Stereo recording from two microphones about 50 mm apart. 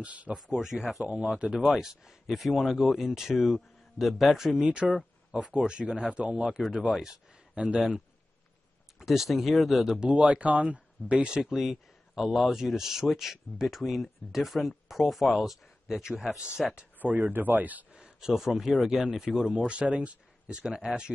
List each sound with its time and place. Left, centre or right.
0.0 s speech: right
0.5 s speech: centre
4.6 s speech: right
8.9 s speech: centre
9.9 s speech: right
11.2 s speech: centre
17.0 s speech: right
17.9 s speech: centre
19.5 s speech: right